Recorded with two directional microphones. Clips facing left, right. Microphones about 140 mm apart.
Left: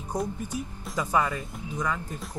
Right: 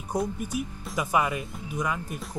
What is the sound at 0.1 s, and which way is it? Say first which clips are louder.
Speech: right 2 dB; 10° right (ahead or behind).